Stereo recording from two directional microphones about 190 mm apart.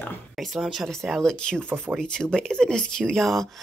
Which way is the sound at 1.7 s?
10° right (ahead or behind).